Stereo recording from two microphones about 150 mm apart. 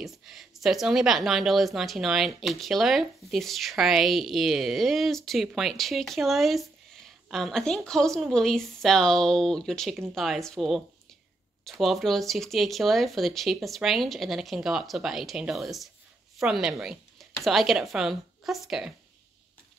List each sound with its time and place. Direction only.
0.0 s speech: centre (ahead or behind)